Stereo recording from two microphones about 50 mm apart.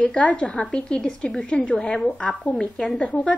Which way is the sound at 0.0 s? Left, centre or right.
Left.